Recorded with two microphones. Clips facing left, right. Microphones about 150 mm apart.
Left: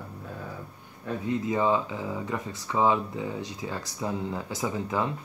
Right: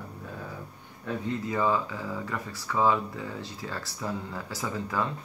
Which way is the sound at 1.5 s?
20° left (ahead or behind).